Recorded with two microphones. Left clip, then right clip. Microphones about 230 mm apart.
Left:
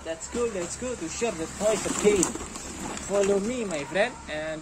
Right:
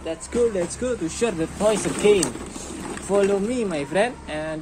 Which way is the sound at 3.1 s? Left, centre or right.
Centre.